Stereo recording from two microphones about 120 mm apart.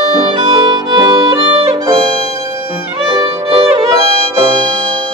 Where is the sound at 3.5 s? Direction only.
45° right (ahead or behind).